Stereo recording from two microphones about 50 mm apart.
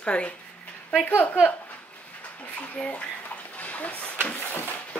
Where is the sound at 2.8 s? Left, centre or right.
Left.